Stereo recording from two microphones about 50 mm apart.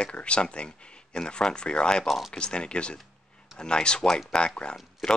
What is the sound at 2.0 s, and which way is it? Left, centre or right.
Speech, centre.